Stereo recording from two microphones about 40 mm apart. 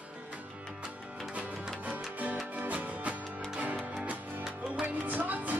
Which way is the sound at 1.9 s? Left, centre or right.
Right.